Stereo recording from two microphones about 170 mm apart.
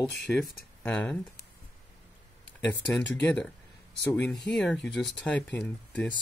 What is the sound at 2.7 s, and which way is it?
Speech, 5° left (ahead or behind).